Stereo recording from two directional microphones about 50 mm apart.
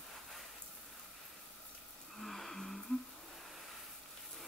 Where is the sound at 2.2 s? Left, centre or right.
Centre.